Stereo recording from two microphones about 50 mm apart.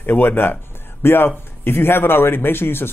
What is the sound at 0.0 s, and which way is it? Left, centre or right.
A man's voice, left.